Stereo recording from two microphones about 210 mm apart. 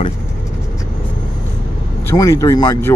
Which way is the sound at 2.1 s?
15° left (ahead or behind).